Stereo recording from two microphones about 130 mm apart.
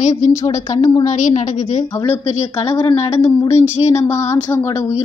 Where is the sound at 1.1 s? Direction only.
65° left (ahead or behind).